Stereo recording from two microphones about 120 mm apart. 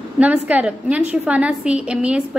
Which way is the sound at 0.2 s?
15° right (ahead or behind).